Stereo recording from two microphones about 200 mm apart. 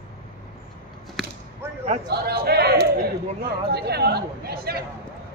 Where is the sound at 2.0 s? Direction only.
50° right (ahead or behind).